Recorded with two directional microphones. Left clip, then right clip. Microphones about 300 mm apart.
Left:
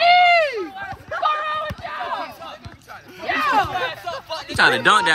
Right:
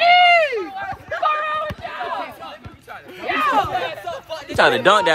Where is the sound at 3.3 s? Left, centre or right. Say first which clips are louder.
Right 1 dB; left.